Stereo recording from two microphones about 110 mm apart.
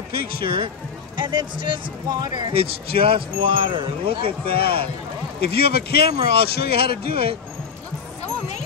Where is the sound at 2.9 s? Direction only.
55° right (ahead or behind).